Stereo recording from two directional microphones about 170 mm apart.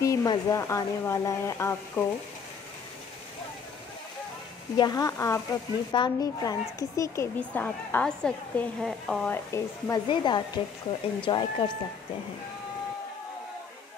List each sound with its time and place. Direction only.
0.0 s speech: 20° left (ahead or behind)
4.7 s a woman's voice: 20° left (ahead or behind); by 9.3 s centre (ahead or behind)
9.3 s a woman's voice: 15° left (ahead or behind)